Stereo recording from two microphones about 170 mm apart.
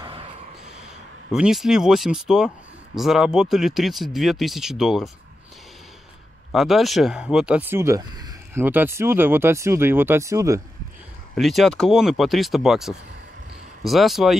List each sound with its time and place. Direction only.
0.0 s a sound: 30° right (ahead or behind)
1.3 s speech: 5° right (ahead or behind)
6.5 s speech: centre (ahead or behind); by 10.6 s 20° right (ahead or behind)
11.3 s speech: centre (ahead or behind)